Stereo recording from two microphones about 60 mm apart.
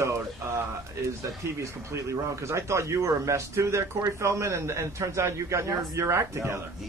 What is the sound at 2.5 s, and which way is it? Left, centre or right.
A man's voice, right.